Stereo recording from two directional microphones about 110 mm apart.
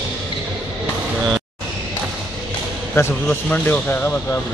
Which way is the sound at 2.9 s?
20° left (ahead or behind).